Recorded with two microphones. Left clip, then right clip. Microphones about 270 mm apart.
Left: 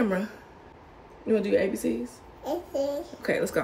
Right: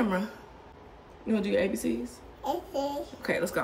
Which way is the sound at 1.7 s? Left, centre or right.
Right.